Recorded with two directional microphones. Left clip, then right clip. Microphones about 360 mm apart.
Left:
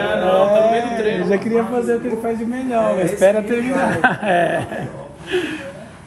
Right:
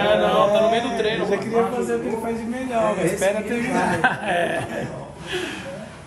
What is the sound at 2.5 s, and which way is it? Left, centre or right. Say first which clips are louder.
A man's voice: left 3 dB; centre.